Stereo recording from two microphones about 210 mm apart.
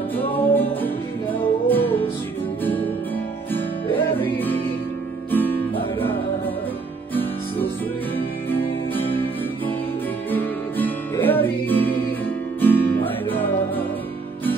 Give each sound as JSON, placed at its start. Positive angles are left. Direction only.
{"t": 0.3, "sound": "music", "side_deg": 10}
{"t": 3.5, "sound": "music", "side_deg": 10}
{"t": 10.3, "sound": "music", "side_deg": 10}